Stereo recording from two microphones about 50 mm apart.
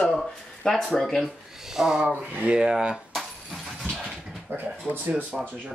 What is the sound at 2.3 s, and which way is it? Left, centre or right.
Speech, right.